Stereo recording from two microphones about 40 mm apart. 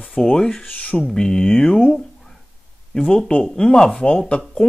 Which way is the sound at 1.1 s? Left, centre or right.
Centre.